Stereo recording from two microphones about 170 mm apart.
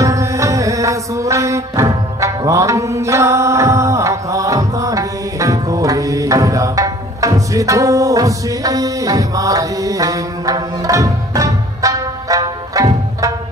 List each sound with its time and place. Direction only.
0.0 s music: 20° right (ahead or behind)